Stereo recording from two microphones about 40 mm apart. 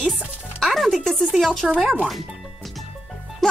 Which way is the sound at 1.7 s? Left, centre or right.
Centre.